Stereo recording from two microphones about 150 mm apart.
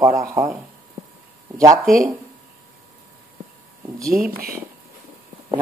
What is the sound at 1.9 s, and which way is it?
Speech, centre (ahead or behind).